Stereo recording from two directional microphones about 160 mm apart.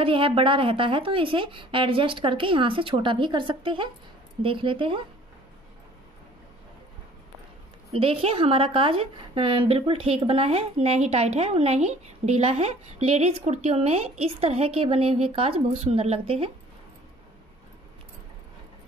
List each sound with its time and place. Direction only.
0.0 s a woman's voice: 35° right (ahead or behind)
7.9 s a woman's voice: 35° right (ahead or behind)